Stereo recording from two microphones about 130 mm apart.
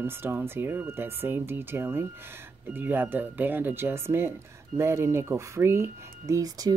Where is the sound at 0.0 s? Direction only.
15° right (ahead or behind).